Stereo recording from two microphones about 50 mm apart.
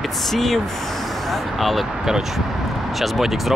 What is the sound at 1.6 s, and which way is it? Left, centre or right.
Speech, centre.